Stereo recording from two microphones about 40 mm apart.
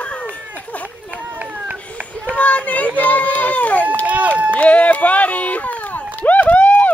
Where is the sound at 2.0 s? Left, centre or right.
Right.